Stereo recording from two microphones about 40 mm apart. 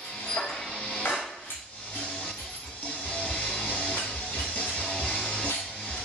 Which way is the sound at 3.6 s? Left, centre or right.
Left.